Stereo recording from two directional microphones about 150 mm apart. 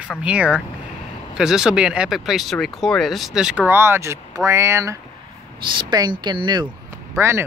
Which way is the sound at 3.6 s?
15° right (ahead or behind).